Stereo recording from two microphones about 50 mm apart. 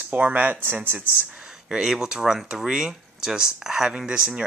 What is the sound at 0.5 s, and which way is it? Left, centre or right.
Speech, right.